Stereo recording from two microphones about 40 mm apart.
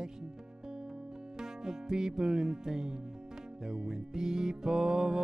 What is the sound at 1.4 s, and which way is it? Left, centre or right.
Music, centre.